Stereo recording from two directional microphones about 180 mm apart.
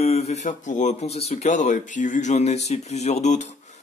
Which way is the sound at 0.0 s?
35° left (ahead or behind).